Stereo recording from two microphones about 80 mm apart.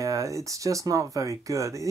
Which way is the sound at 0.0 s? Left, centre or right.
Right.